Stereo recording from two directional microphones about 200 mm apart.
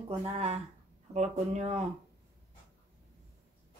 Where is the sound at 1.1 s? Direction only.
35° right (ahead or behind).